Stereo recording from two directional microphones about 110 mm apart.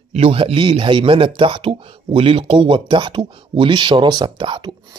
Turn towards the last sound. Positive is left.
turn(degrees=-45)  # may be behind; listen again after turning